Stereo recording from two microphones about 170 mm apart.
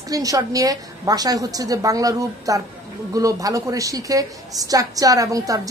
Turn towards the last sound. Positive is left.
turn(degrees=-20)  # may be behind; listen again after turning